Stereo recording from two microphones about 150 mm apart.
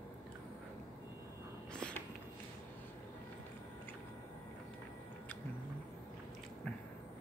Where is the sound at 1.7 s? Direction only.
5° left (ahead or behind).